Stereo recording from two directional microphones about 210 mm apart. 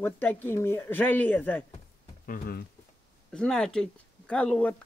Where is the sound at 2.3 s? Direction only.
45° left (ahead or behind).